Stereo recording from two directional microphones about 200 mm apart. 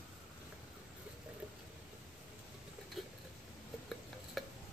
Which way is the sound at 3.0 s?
Centre (ahead or behind).